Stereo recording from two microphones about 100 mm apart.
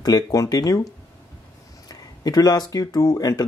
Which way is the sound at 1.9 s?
40° left (ahead or behind).